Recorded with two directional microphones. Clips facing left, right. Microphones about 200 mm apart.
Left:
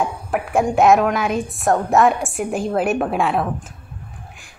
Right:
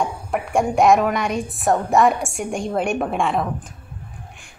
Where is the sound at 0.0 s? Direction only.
Centre (ahead or behind).